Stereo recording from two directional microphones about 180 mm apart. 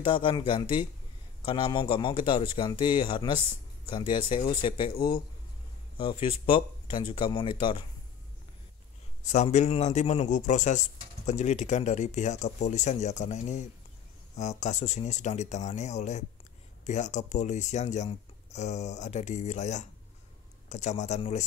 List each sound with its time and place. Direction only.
0.0 s speech: 25° left (ahead or behind)
9.2 s speech: 40° left (ahead or behind)